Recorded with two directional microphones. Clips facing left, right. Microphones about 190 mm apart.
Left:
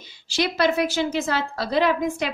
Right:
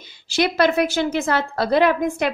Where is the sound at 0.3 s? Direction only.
55° right (ahead or behind).